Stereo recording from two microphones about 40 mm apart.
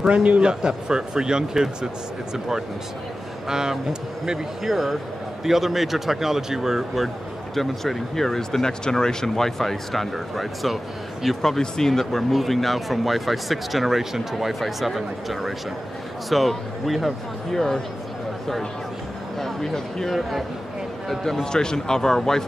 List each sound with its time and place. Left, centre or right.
0.0 s speech: right
4.6 s speech: centre
7.5 s speech: centre
17.5 s speech: centre
19.3 s speech: centre
20.1 s speech: centre
21.5 s speech: centre